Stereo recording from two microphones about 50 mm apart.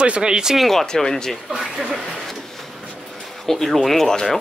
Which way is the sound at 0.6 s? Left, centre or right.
Centre.